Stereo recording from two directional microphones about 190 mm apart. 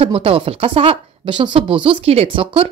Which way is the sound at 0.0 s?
30° right (ahead or behind).